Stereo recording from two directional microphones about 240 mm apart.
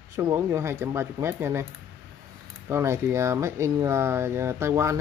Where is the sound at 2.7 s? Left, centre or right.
Centre.